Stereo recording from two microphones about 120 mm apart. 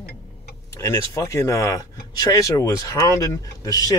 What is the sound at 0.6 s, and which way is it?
Vehicle, 25° left (ahead or behind).